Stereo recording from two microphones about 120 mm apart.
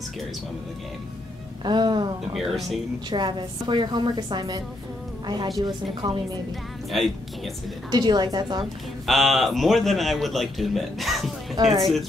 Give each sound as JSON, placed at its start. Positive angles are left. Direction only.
{"t": 1.6, "sound": "a woman's voice", "side_deg": -40}
{"t": 2.3, "sound": "a man's voice", "side_deg": 0}
{"t": 3.1, "sound": "a woman's voice", "side_deg": -40}
{"t": 6.9, "sound": "a man's voice", "side_deg": 0}
{"t": 7.9, "sound": "a woman's voice", "side_deg": -35}
{"t": 9.0, "sound": "a man's voice", "side_deg": 0}
{"t": 11.6, "sound": "a woman's voice", "side_deg": -35}